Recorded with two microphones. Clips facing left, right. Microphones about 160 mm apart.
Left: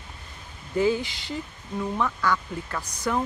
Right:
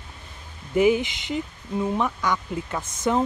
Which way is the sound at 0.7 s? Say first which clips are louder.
Right 4 dB; 20° right (ahead or behind).